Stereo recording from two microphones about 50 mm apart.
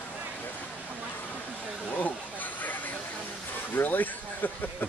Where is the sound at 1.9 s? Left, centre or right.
Left.